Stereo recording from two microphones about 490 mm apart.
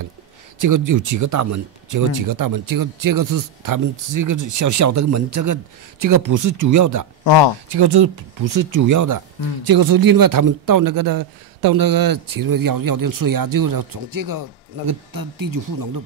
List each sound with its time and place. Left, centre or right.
0.6 s speech: right
7.7 s speech: right